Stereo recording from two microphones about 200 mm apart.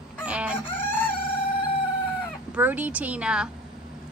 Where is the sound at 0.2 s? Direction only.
5° right (ahead or behind).